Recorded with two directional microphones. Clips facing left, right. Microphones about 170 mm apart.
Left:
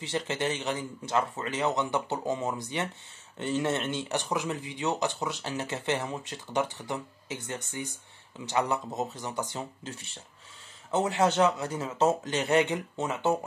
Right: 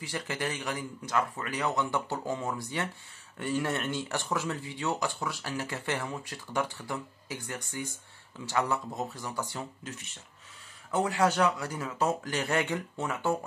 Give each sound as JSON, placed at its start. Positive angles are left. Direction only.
{"t": 0.0, "sound": "speech", "side_deg": 25}